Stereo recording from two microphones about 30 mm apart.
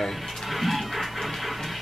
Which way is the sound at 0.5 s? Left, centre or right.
Centre.